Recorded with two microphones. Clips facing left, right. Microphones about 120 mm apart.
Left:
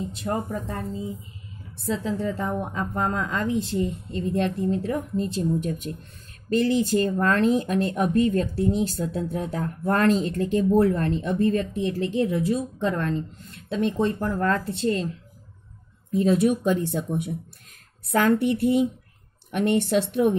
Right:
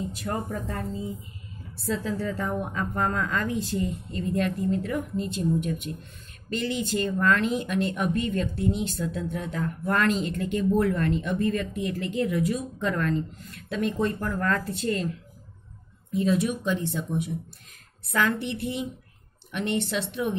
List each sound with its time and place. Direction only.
0.1 s a woman's voice: 25° left (ahead or behind)
16.1 s speech: 40° left (ahead or behind)